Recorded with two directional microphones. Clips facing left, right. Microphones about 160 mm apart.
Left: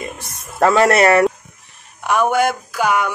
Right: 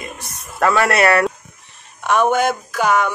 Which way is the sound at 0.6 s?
30° left (ahead or behind).